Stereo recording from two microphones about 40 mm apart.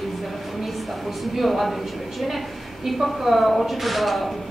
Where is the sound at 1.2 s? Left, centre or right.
Centre.